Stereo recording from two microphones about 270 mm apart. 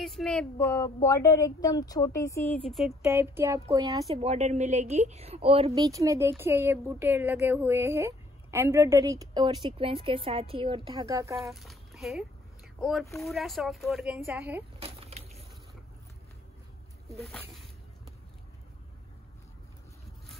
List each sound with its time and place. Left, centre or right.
0.0 s a woman's voice: centre
11.5 s speech: centre
14.8 s a sound: right
17.1 s speech: centre